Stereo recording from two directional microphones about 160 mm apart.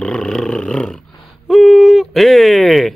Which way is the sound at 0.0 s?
5° left (ahead or behind).